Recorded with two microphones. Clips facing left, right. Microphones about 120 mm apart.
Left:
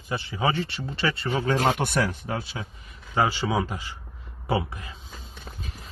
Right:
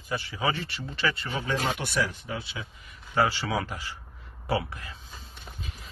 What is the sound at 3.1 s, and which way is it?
Speech, 20° left (ahead or behind).